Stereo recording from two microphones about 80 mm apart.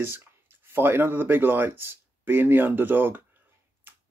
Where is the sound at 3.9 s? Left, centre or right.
Right.